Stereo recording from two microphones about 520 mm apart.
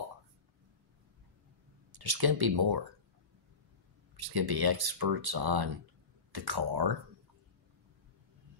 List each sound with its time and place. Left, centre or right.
1.9 s speech: right
4.3 s speech: right